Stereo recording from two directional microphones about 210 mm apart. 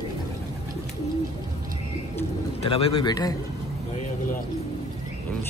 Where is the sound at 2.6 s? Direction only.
25° left (ahead or behind).